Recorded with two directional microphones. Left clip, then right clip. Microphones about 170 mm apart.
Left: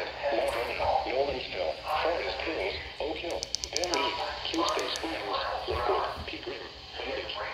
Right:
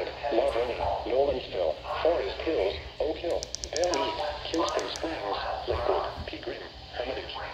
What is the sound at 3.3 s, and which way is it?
Music, 25° right (ahead or behind).